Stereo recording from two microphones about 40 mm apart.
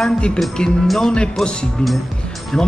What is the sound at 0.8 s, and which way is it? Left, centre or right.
Speech, centre.